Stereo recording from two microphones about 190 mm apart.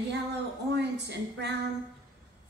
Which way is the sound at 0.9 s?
65° right (ahead or behind).